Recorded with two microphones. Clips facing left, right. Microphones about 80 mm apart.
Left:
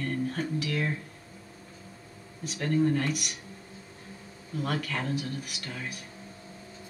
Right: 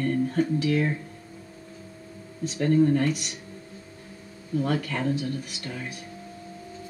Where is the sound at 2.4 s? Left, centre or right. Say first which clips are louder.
Right 5 dB; right.